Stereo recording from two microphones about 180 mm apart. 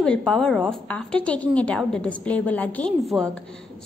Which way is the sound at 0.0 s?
5° left (ahead or behind).